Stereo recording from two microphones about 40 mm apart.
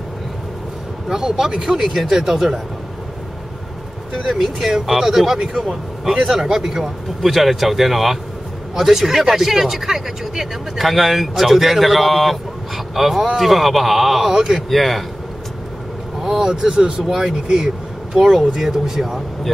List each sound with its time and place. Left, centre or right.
1.0 s speech: centre
4.1 s speech: centre
5.6 s speech: centre
6.2 s speech: centre
14.7 s speech: centre
16.2 s speech: centre